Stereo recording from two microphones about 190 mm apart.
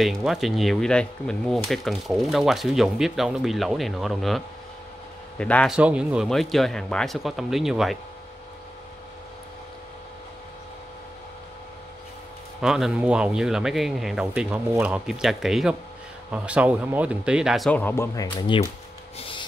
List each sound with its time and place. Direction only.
0.0 s speech: centre (ahead or behind)
5.4 s speech: 5° left (ahead or behind)
5.8 s speech: 5° right (ahead or behind)
12.6 s speech: centre (ahead or behind); by 18.7 s 20° left (ahead or behind)
19.1 s rub: 30° left (ahead or behind)